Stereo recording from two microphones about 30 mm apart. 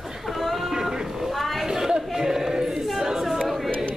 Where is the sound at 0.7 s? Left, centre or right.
Centre.